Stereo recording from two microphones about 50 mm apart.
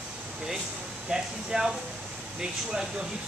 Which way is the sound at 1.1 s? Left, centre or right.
Centre.